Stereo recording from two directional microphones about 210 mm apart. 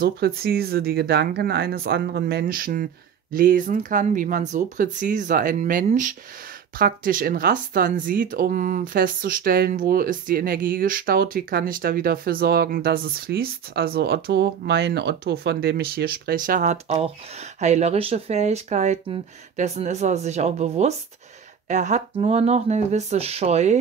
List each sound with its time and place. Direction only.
0.0 s speech: 45° right (ahead or behind); by 23.8 s 30° right (ahead or behind)